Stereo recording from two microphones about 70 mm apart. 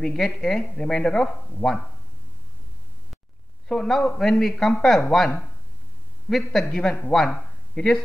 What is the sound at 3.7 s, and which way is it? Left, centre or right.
Speech, centre.